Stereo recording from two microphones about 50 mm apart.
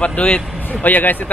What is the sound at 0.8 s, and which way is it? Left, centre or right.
Speech, left.